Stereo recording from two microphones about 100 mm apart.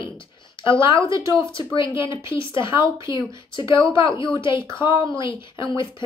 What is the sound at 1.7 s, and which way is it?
A woman's voice, 55° left (ahead or behind).